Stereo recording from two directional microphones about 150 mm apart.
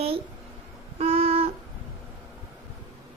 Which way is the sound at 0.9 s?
40° right (ahead or behind).